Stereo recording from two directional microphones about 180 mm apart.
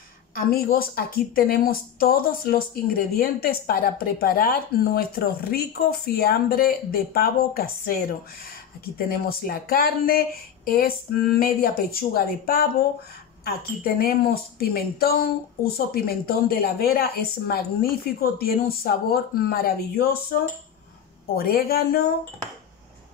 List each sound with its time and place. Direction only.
0.3 s a woman's voice: 55° left (ahead or behind)
21.4 s a woman's voice: 55° left (ahead or behind)